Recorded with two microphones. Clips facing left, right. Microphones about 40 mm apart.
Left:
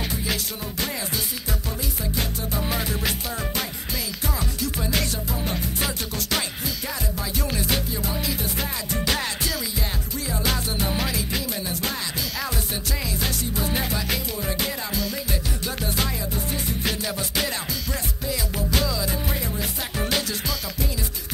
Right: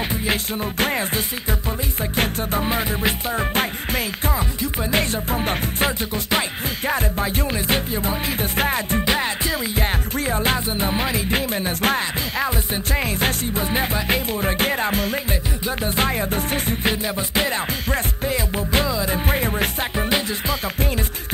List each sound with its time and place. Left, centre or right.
0.3 s music: right
2.6 s music: right
5.9 s music: right
9.0 s music: right
9.8 s music: right
16.8 s music: right
20.0 s music: right